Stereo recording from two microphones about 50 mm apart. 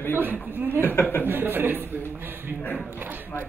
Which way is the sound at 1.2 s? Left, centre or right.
Right.